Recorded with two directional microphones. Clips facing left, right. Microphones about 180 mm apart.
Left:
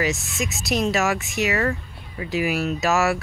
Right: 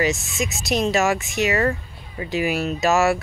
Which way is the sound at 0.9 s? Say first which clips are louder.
Right 2 dB; centre (ahead or behind).